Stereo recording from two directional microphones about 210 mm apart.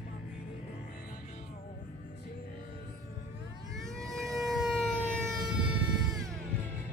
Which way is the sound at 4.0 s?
Centre (ahead or behind).